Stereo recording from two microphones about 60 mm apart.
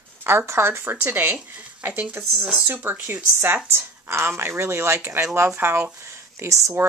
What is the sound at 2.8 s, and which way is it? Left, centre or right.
Speech, right.